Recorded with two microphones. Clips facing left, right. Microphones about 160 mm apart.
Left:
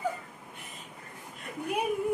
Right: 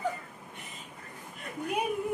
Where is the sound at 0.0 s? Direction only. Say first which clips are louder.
Even; 5° left (ahead or behind).